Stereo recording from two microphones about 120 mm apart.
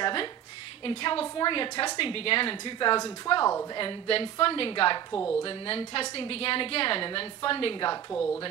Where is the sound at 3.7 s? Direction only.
45° left (ahead or behind).